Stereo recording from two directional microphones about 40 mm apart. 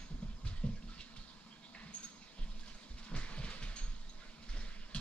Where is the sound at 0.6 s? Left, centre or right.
Left.